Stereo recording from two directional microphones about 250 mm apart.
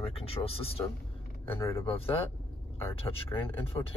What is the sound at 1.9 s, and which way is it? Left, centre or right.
Speech, left.